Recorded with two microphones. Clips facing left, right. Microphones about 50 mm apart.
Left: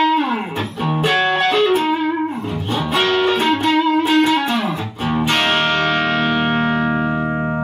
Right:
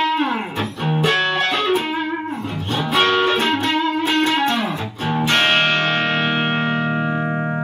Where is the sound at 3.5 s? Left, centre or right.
Centre.